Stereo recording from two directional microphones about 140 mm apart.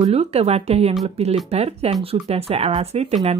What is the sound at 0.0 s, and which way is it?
Speech, 45° right (ahead or behind).